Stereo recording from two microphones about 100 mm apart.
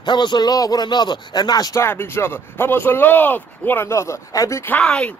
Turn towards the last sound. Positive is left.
turn(degrees=15)  # may be behind; listen again after turning